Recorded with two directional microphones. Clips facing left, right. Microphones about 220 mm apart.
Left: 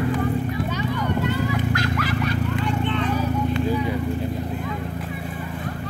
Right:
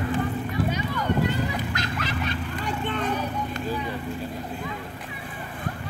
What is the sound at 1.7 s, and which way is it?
Clip-clop, 20° right (ahead or behind).